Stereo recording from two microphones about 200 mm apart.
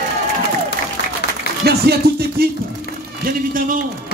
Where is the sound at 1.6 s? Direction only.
55° right (ahead or behind).